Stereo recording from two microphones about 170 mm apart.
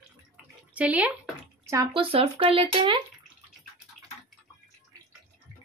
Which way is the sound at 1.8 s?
30° right (ahead or behind).